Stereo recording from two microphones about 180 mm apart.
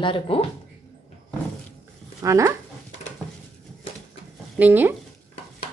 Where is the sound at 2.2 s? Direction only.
15° right (ahead or behind).